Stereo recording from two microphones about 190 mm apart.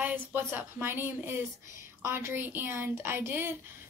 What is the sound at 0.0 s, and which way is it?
A woman's voice, 10° right (ahead or behind).